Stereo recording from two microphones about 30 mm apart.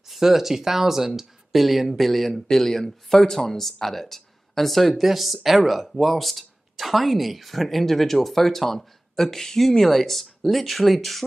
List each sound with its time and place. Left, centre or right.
0.0 s speech: centre